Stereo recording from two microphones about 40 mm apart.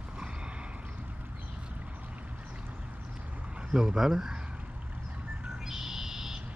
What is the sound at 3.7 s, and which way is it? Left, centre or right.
Speech, centre.